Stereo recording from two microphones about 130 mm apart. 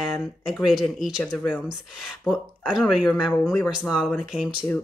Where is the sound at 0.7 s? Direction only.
Centre (ahead or behind).